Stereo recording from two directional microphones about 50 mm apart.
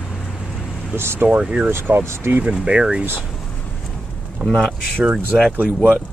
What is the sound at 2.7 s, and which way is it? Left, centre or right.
Speech, centre.